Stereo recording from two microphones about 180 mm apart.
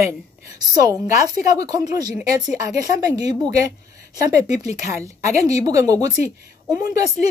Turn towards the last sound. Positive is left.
turn(degrees=-20)  # may be behind; listen again after turning